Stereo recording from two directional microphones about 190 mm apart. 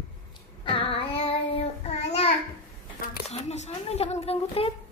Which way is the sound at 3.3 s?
35° left (ahead or behind).